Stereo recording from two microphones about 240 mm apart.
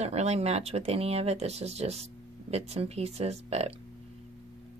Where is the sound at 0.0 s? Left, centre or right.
Right.